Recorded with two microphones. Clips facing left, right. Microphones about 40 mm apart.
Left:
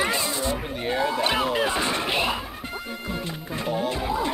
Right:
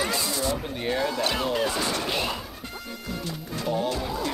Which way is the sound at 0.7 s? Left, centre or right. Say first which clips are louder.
Left 4 dB; centre.